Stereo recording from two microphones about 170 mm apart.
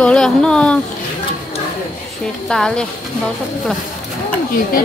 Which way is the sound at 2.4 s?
5° left (ahead or behind).